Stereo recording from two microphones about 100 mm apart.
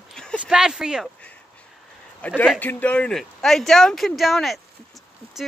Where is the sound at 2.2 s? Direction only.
15° left (ahead or behind).